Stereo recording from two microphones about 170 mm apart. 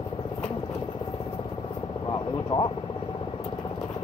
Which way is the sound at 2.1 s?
25° left (ahead or behind).